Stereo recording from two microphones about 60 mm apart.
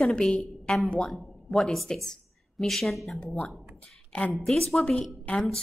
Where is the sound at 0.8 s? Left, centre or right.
Centre.